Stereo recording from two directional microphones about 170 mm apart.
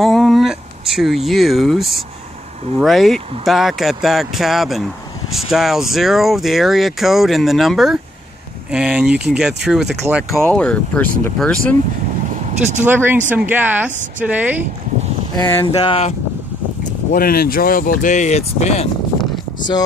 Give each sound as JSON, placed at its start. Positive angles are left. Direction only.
{"t": 0.0, "sound": "a sound", "side_deg": 0}
{"t": 2.8, "sound": "speech", "side_deg": 0}
{"t": 10.4, "sound": "speech", "side_deg": 5}
{"t": 12.8, "sound": "speech", "side_deg": -10}
{"t": 15.3, "sound": "speech", "side_deg": 15}
{"t": 15.6, "sound": "speech", "side_deg": 30}
{"t": 17.1, "sound": "speech", "side_deg": 60}